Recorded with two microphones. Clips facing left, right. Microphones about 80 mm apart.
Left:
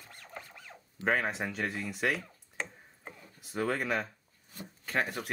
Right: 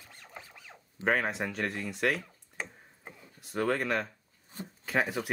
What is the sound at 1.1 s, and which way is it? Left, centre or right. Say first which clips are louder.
Speech: right 1 dB; centre.